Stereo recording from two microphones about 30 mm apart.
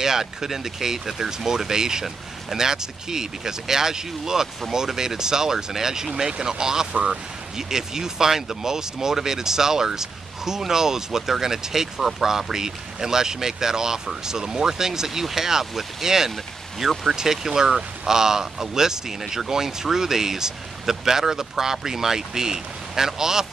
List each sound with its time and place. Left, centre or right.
0.0 s speech: centre